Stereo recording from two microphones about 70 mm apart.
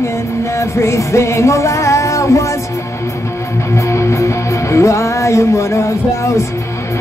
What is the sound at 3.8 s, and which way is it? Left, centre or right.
Music, left.